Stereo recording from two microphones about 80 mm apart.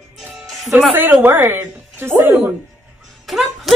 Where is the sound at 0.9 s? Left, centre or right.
Right.